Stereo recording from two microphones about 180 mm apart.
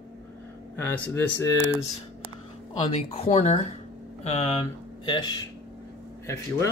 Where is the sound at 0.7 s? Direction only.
15° left (ahead or behind).